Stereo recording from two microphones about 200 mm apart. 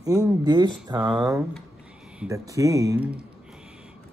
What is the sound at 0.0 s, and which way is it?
Speech, 20° right (ahead or behind).